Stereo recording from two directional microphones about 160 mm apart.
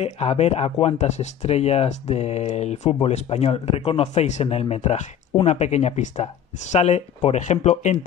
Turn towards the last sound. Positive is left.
turn(degrees=45)  # may be behind; listen again after turning